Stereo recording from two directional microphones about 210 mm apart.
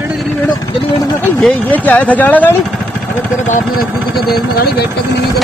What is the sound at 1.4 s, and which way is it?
Speech, 5° left (ahead or behind).